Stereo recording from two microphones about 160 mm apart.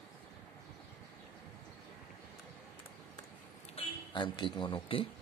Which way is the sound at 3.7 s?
30° left (ahead or behind).